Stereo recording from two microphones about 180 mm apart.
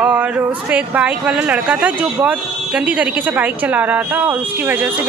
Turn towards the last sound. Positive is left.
turn(degrees=-10)  # may be behind; listen again after turning